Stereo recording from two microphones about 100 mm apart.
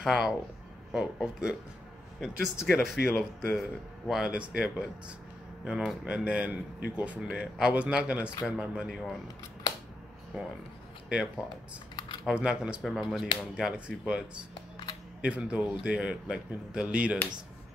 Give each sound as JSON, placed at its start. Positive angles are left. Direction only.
{"t": 0.0, "sound": "speech", "side_deg": -5}
{"t": 10.3, "sound": "speech", "side_deg": -10}
{"t": 11.9, "sound": "typing", "side_deg": 45}
{"t": 12.3, "sound": "speech", "side_deg": -10}
{"t": 12.8, "sound": "speech", "side_deg": 0}
{"t": 14.5, "sound": "camera", "side_deg": 55}
{"t": 15.2, "sound": "speech", "side_deg": -10}